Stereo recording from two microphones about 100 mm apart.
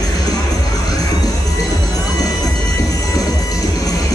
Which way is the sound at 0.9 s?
40° left (ahead or behind).